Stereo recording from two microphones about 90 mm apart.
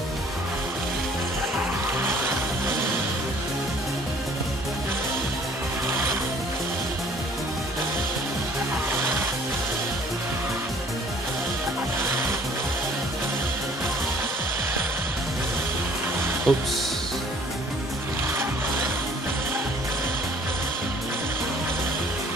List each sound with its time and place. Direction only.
2.0 s music: 25° right (ahead or behind)
8.9 s music: 25° right (ahead or behind)
16.5 s speech: centre (ahead or behind)